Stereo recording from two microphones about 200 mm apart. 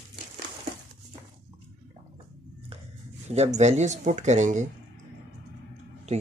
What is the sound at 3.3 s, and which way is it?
Speech, 35° right (ahead or behind).